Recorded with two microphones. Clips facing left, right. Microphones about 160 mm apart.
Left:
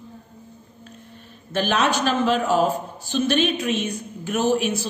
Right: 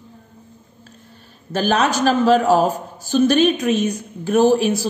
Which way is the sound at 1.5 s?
40° right (ahead or behind).